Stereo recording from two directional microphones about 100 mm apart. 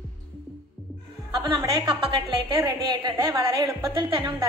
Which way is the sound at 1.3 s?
50° right (ahead or behind).